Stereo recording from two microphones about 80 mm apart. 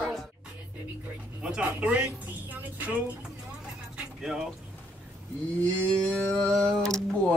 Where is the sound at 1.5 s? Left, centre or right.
Centre.